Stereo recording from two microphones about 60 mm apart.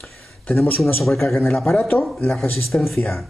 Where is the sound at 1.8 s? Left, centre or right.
Left.